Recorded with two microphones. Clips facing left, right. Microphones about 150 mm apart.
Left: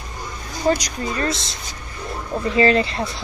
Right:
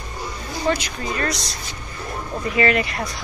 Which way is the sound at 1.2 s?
25° left (ahead or behind).